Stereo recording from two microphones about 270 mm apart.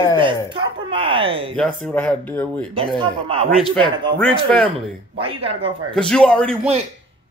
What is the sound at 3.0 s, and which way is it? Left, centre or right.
Speech, centre.